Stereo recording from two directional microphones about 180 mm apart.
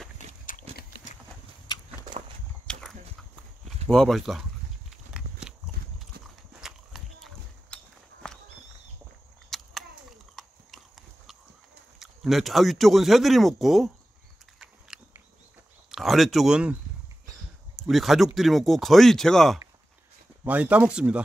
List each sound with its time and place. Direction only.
2.6 s horse: 5° left (ahead or behind)
3.9 s speech: centre (ahead or behind)
6.1 s clip-clop: 60° right (ahead or behind)
6.6 s walk: centre (ahead or behind)
9.5 s a sound: centre (ahead or behind)
10.3 s clip-clop: centre (ahead or behind)
12.0 s speech: centre (ahead or behind)
14.6 s a sound: 5° right (ahead or behind)
15.9 s speech: centre (ahead or behind)
17.7 s speech: centre (ahead or behind)